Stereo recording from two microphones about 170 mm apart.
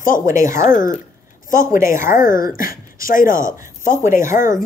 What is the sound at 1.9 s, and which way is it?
Speech, 50° left (ahead or behind).